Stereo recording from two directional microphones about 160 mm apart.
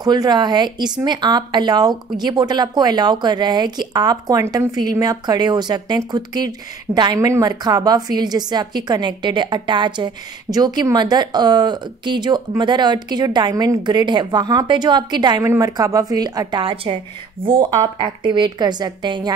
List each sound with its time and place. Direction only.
0.0 s speech: 25° right (ahead or behind)